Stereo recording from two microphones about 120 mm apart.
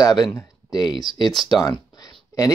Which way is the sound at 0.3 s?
30° left (ahead or behind).